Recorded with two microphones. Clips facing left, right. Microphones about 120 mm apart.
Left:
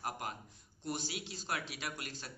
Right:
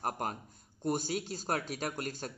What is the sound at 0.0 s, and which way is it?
Speech, 45° right (ahead or behind).